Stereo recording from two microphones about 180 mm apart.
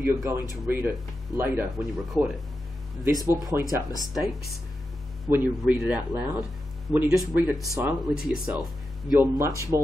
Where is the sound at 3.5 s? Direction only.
15° right (ahead or behind).